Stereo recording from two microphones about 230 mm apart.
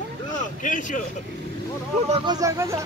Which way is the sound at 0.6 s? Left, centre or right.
Left.